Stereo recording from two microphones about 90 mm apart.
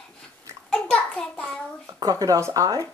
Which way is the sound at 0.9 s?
10° left (ahead or behind).